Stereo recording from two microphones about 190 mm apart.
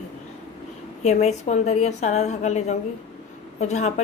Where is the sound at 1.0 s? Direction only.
35° left (ahead or behind).